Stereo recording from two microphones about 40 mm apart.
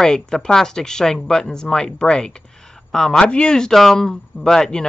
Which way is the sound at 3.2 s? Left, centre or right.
Left.